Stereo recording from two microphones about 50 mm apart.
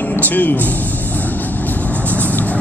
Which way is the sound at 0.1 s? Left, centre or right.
Left.